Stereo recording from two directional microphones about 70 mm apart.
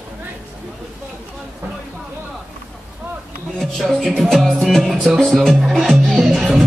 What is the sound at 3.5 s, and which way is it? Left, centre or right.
Speech, centre.